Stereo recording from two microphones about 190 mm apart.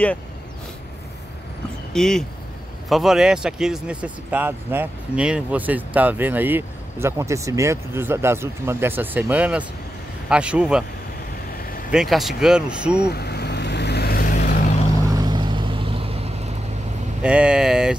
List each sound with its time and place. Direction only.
2.0 s speech: centre (ahead or behind)
11.9 s speech: centre (ahead or behind)
13.0 s vehicle: 60° left (ahead or behind)
15.0 s vehicle: 20° right (ahead or behind)
17.2 s speech: 5° right (ahead or behind)